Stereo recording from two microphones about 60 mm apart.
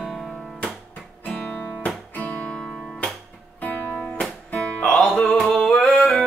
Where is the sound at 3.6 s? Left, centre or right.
Left.